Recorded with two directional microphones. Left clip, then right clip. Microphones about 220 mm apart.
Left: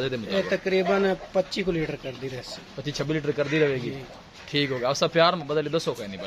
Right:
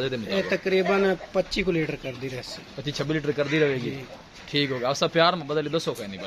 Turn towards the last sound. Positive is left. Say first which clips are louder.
# left 1 dB
turn(degrees=0)  # may be behind; listen again after turning